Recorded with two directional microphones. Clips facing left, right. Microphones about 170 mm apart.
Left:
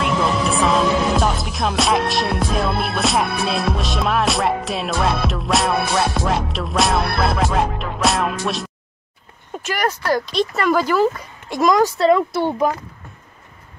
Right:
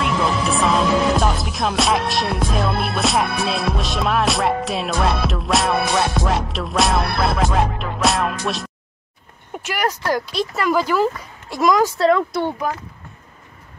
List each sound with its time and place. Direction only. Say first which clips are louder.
0.0 s music: left 1 dB; centre (ahead or behind)
9.5 s music: left 1 dB; 15° right (ahead or behind)
12.1 s speech: left 2 dB; 5° left (ahead or behind)